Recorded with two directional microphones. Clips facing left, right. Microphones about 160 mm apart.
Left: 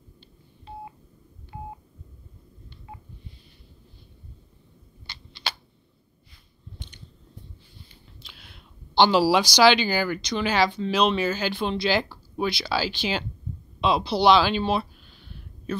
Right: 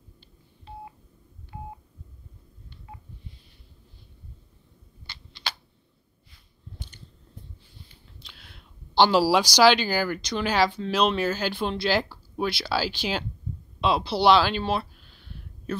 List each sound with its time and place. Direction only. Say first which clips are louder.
1.5 s telephone dialing: left 2 dB; 15° left (ahead or behind)
5.0 s a sound: left 2 dB; 15° left (ahead or behind)
8.2 s speech: even; 5° left (ahead or behind)